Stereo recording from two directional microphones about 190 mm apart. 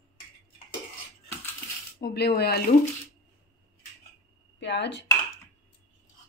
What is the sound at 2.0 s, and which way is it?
Speech, 60° left (ahead or behind).